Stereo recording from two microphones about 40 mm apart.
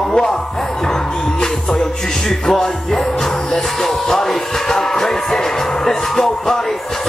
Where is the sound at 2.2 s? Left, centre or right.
Centre.